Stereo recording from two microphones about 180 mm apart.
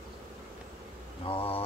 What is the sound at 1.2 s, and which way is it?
Mantra, 30° left (ahead or behind).